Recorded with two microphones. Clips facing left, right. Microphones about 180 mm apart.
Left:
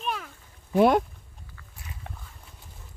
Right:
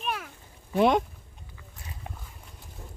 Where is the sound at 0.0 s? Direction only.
5° right (ahead or behind).